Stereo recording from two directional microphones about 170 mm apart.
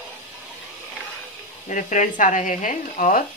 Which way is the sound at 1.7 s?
45° left (ahead or behind).